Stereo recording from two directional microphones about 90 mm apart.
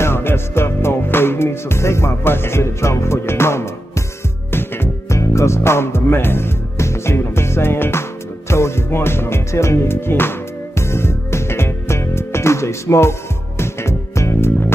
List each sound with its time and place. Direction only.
0.0 s music: 25° left (ahead or behind)